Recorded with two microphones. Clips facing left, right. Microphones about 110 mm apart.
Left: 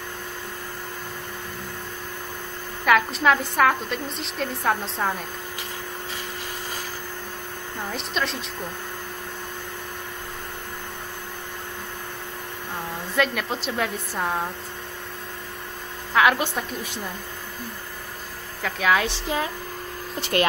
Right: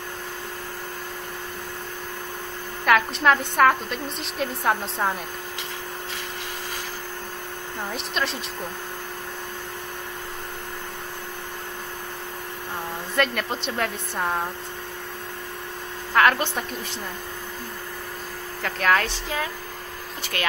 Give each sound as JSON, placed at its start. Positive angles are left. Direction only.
{"t": 2.8, "sound": "a woman's voice", "side_deg": 0}
{"t": 7.9, "sound": "a woman's voice", "side_deg": 0}
{"t": 13.1, "sound": "a woman's voice", "side_deg": 0}
{"t": 16.1, "sound": "a woman's voice", "side_deg": 5}
{"t": 18.6, "sound": "a woman's voice", "side_deg": 5}
{"t": 19.2, "sound": "speech", "side_deg": 20}